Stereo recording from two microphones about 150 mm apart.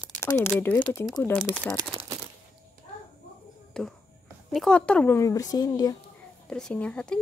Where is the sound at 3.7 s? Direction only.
5° left (ahead or behind); by 5.9 s 25° left (ahead or behind).